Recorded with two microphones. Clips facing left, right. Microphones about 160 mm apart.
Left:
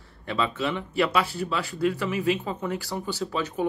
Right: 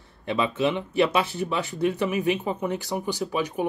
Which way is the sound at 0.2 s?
20° right (ahead or behind).